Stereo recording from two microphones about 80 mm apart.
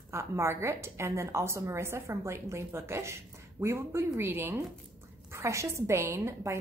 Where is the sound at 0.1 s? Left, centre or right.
Right.